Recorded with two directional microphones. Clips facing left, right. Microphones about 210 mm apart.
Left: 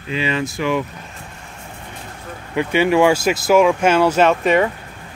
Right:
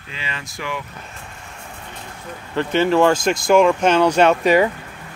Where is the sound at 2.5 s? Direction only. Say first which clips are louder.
Left 1 dB; 10° left (ahead or behind).